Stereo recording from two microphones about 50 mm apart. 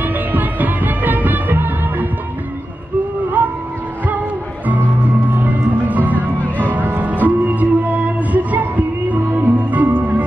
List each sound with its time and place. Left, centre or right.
0.0 s music: right
3.4 s a sound: right
4.6 s music: right